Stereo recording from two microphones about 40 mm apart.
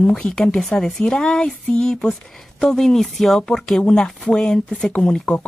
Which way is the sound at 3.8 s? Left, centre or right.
Left.